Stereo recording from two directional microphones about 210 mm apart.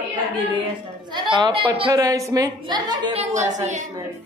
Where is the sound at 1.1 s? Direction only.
20° right (ahead or behind).